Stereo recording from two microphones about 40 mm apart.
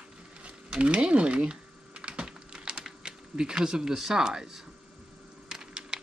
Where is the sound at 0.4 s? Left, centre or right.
Right.